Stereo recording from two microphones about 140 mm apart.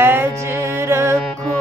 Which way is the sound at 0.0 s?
15° right (ahead or behind).